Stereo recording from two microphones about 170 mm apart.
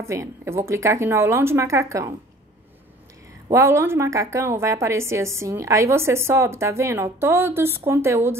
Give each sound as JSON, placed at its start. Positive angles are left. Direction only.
{"t": 0.0, "sound": "a woman's voice", "side_deg": -15}
{"t": 3.4, "sound": "a woman's voice", "side_deg": -15}